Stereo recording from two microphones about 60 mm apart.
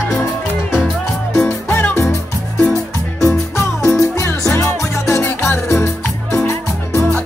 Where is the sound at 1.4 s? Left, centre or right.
Left.